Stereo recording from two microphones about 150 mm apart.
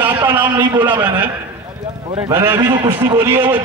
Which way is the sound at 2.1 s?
15° right (ahead or behind).